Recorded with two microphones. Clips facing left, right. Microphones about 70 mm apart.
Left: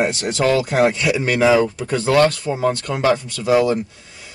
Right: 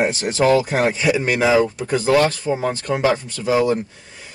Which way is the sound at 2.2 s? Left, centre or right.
Left.